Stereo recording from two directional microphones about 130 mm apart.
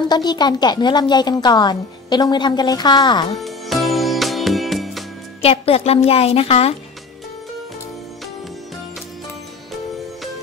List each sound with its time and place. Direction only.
0.1 s a woman's voice: 35° left (ahead or behind)
3.3 s music: centre (ahead or behind)
5.4 s speech: 50° left (ahead or behind)